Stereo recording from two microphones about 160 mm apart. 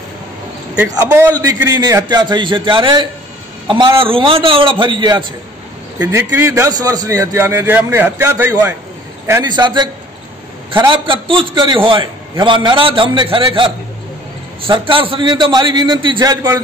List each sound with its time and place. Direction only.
0.8 s a man's voice: 20° right (ahead or behind)
5.9 s a man's voice: 15° right (ahead or behind)
9.4 s a man's voice: 30° right (ahead or behind)
14.7 s a man's voice: 30° right (ahead or behind)